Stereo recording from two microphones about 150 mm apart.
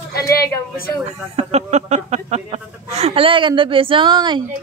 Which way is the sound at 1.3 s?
45° right (ahead or behind).